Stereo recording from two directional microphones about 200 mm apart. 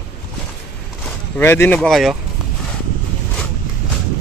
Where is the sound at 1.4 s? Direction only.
10° left (ahead or behind).